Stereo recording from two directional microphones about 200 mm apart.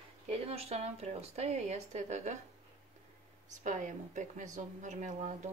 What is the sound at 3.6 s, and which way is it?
Speech, 40° right (ahead or behind).